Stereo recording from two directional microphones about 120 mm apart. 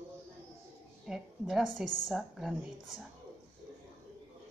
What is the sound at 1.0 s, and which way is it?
A woman's voice, 5° right (ahead or behind).